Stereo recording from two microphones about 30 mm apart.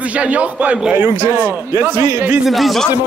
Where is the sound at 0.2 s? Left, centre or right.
Right.